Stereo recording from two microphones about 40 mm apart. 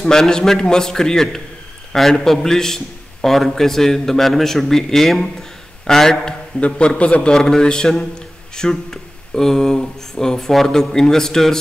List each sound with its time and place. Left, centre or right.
0.0 s a man's voice: centre
6.6 s a man's voice: left
7.3 s a man's voice: centre